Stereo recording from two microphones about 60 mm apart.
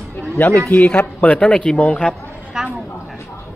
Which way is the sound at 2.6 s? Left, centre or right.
Centre.